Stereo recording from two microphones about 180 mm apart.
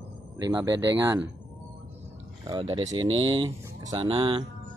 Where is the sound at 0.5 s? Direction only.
15° right (ahead or behind).